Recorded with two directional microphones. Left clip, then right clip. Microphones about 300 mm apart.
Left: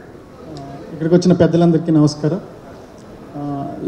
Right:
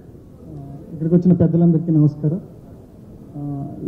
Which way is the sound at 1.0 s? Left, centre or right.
Centre.